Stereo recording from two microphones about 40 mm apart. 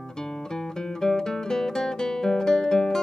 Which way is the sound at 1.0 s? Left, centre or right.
Centre.